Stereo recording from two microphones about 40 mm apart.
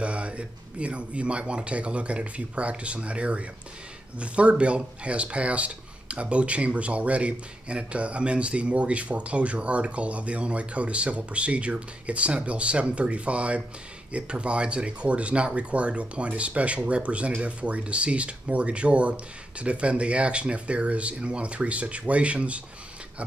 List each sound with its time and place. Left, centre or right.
0.0 s speech: right